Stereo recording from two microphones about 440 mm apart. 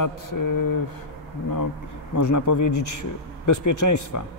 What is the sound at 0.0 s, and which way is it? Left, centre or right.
Speech, left.